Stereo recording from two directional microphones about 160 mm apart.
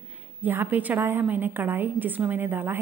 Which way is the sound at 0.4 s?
10° right (ahead or behind).